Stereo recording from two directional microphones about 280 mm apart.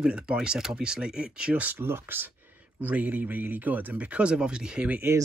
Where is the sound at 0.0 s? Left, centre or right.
Centre.